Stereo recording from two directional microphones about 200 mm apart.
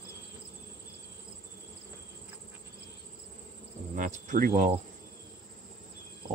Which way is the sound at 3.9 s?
40° right (ahead or behind).